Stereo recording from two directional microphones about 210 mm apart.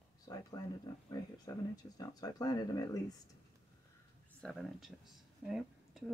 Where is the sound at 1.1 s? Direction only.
15° left (ahead or behind).